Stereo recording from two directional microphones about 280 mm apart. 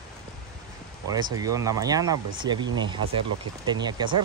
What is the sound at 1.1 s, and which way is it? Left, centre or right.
Speech, centre.